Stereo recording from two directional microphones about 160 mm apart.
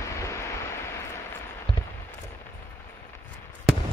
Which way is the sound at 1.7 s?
35° left (ahead or behind).